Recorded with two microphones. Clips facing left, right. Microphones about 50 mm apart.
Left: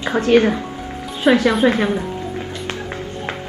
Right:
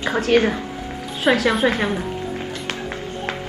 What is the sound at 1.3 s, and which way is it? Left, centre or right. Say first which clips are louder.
Speech: left 3 dB; centre.